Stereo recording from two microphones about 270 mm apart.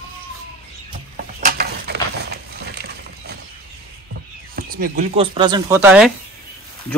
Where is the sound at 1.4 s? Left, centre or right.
Right.